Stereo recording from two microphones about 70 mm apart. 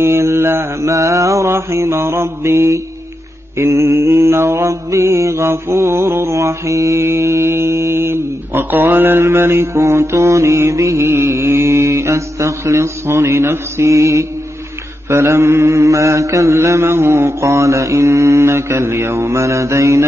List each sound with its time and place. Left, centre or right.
0.0 s mantra: right